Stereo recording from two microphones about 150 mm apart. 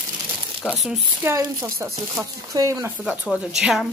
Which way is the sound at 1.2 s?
20° right (ahead or behind).